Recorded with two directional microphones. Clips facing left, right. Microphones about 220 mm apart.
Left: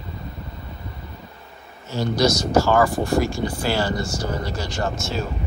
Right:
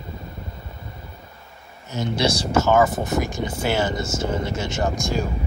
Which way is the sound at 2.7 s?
20° right (ahead or behind).